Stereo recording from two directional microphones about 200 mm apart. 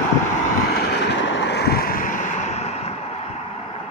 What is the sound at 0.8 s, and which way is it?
Vehicle, 60° left (ahead or behind).